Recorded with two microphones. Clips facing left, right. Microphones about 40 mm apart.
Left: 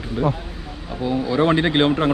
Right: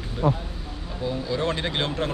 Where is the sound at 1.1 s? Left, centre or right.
Left.